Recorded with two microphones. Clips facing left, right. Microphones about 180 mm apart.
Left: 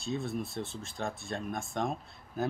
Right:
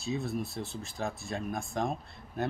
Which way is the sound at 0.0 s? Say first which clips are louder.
Right 1 dB; centre (ahead or behind).